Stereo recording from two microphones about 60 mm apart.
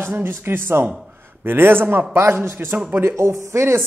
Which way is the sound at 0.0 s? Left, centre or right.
Right.